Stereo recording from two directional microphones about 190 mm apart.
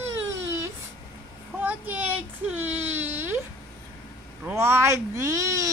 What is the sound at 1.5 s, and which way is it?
Baby cry, 10° right (ahead or behind).